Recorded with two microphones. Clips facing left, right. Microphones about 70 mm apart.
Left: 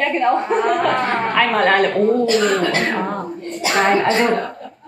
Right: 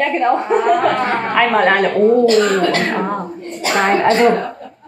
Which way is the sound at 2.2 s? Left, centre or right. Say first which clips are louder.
Right 4 dB; right.